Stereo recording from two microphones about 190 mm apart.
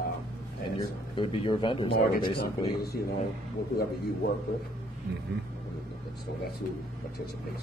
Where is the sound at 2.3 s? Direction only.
55° left (ahead or behind).